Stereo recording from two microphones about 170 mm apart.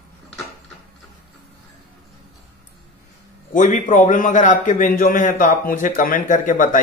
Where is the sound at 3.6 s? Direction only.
50° left (ahead or behind).